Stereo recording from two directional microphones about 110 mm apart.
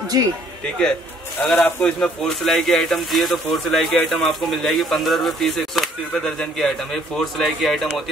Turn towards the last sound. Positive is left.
turn(degrees=0)  # may be behind; listen again after turning